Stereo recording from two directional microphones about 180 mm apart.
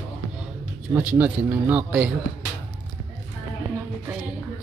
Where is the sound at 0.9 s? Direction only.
10° right (ahead or behind).